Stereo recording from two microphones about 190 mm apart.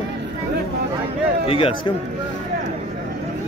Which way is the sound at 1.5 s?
25° left (ahead or behind).